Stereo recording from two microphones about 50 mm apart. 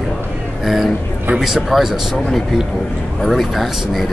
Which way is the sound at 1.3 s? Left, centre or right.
Centre.